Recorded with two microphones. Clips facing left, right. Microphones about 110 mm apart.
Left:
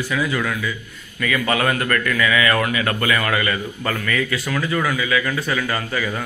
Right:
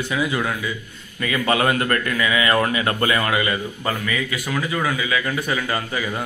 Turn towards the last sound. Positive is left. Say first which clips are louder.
# left 1 dB
turn(degrees=-20)  # may be behind; listen again after turning